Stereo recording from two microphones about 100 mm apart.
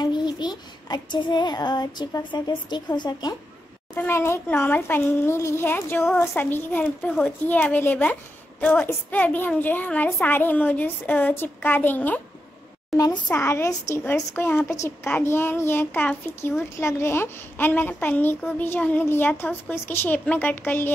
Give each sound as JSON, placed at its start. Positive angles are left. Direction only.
{"t": 0.0, "sound": "child singing", "side_deg": 45}
{"t": 3.9, "sound": "a child's voice", "side_deg": 25}
{"t": 13.3, "sound": "a child's voice", "side_deg": 25}